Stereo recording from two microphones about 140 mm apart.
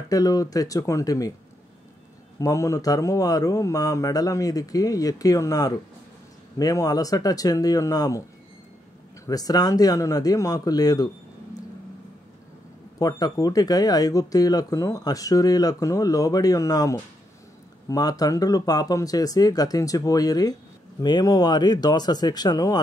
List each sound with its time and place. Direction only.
0.1 s speech: 25° left (ahead or behind)
2.3 s speech: 20° left (ahead or behind)
9.2 s speech: 25° left (ahead or behind)
13.0 s speech: 25° left (ahead or behind)